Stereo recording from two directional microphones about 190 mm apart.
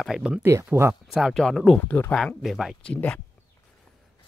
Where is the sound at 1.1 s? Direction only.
Centre (ahead or behind).